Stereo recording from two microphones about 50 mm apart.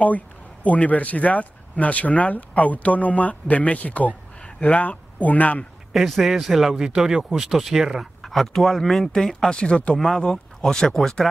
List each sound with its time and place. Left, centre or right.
0.7 s speech: left
5.9 s speech: centre
9.6 s speech: left
9.9 s speech: centre